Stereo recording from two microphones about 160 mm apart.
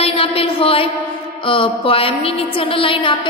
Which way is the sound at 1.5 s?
35° left (ahead or behind).